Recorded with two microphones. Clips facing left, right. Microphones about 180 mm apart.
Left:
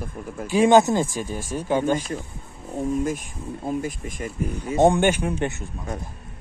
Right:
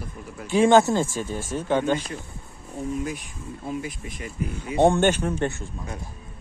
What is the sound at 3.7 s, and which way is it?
Speech, 45° left (ahead or behind).